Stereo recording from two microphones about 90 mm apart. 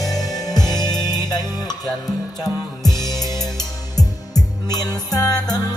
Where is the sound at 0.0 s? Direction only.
45° left (ahead or behind).